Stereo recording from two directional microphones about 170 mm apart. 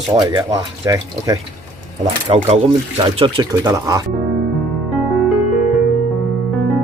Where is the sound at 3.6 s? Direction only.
20° right (ahead or behind).